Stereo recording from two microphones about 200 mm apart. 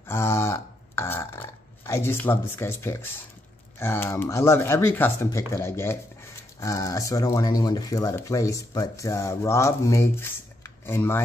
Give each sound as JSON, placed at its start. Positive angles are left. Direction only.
{"t": 0.1, "sound": "burping", "side_deg": 10}
{"t": 3.8, "sound": "speech", "side_deg": 10}